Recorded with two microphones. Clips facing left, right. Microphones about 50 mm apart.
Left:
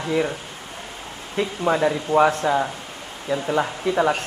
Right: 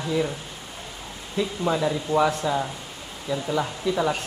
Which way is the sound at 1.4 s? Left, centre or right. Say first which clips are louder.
Left 3 dB; left.